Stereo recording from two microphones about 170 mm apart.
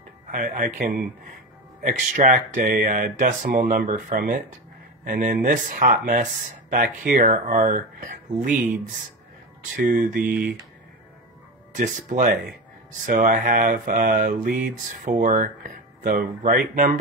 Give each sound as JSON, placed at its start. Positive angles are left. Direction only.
{"t": 0.3, "sound": "speech", "side_deg": -55}
{"t": 4.1, "sound": "speech", "side_deg": -60}
{"t": 9.8, "sound": "speech", "side_deg": -55}
{"t": 10.2, "sound": "speech", "side_deg": -5}
{"t": 11.7, "sound": "speech", "side_deg": -50}